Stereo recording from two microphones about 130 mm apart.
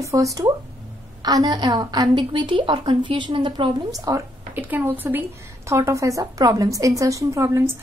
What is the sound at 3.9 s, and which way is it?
A woman's voice, 25° right (ahead or behind).